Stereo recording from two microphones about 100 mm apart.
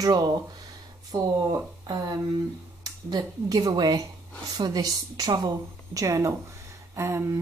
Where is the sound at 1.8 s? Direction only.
45° right (ahead or behind).